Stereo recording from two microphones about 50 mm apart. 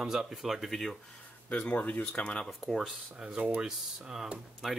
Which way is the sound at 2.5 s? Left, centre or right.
Centre.